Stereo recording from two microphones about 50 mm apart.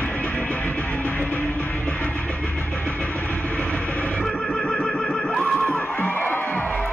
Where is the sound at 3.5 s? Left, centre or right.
Left.